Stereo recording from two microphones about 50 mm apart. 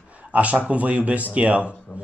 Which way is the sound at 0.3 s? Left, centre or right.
Right.